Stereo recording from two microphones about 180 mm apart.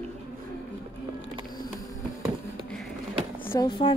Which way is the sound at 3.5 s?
20° left (ahead or behind).